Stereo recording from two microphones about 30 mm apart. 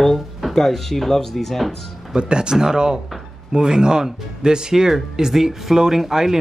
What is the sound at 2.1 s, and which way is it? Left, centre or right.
Speech, right.